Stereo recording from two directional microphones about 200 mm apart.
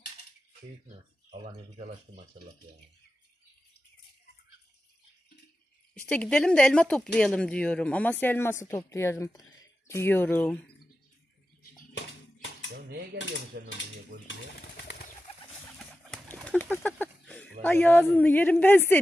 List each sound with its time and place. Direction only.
1.8 s speech: 35° right (ahead or behind)
6.0 s speech: 5° left (ahead or behind)
14.2 s pigeon: 55° left (ahead or behind)
16.1 s a sound: 5° left (ahead or behind)
18.1 s speech: 10° left (ahead or behind)